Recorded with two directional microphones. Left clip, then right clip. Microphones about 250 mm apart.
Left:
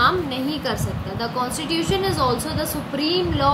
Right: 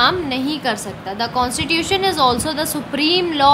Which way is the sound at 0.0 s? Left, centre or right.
Right.